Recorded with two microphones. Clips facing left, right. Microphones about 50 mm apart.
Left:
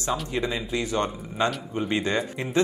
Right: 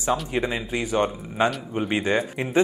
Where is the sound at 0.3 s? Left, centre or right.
Right.